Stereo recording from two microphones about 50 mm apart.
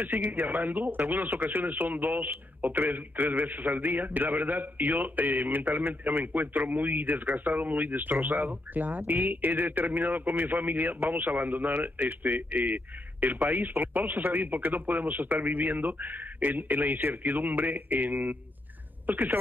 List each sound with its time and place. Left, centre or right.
0.0 s speech: right